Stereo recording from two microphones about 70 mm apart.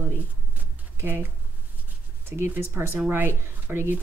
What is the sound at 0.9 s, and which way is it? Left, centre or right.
Speech, right.